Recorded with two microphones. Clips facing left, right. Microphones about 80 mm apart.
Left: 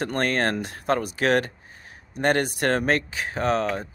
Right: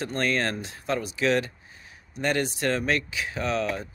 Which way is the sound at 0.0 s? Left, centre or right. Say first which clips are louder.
Left 3 dB; left.